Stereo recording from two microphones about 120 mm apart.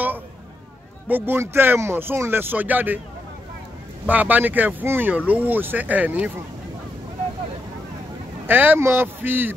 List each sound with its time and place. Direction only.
1.0 s speech: 15° right (ahead or behind)
4.1 s speech: 15° right (ahead or behind)
8.5 s speech: 15° right (ahead or behind)